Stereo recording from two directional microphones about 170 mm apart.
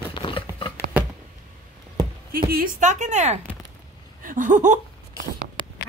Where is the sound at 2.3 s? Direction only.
60° right (ahead or behind); by 3.3 s 45° right (ahead or behind).